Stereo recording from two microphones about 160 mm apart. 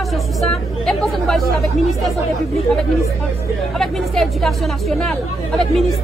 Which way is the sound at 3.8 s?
Centre (ahead or behind).